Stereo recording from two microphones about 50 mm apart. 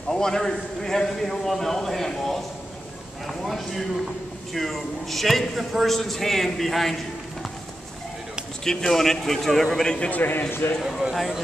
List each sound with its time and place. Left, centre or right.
0.1 s a man's voice: centre
3.4 s a man's voice: centre
8.6 s a man's voice: centre
9.9 s a man's voice: left
10.8 s a man's voice: centre